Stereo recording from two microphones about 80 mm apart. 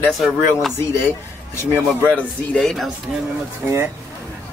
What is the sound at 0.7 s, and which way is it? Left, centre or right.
Speech, left.